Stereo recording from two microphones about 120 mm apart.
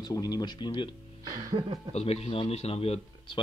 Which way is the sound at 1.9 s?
60° left (ahead or behind).